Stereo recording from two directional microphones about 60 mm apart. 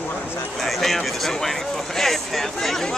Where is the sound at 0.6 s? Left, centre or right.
Centre.